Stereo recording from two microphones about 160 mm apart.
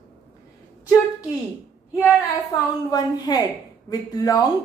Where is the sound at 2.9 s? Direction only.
25° left (ahead or behind).